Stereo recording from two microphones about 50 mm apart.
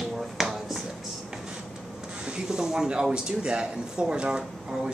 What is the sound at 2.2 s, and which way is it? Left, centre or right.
Speech, centre.